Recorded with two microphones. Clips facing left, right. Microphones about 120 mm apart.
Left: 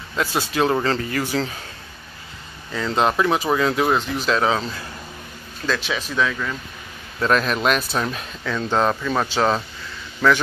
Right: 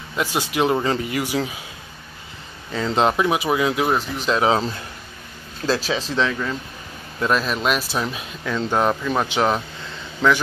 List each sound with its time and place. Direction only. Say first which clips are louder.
0.1 s speech: even; 15° right (ahead or behind)
2.7 s speech: right 1 dB; 20° right (ahead or behind)
4.5 s speech: right 3 dB; 25° right (ahead or behind)
7.2 s speech: left 1 dB; 5° right (ahead or behind)
8.5 s speech: even; 15° right (ahead or behind)